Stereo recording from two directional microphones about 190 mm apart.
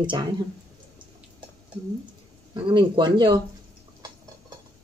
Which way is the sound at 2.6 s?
25° right (ahead or behind).